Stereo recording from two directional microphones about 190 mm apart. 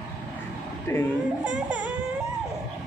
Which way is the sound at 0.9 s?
15° left (ahead or behind).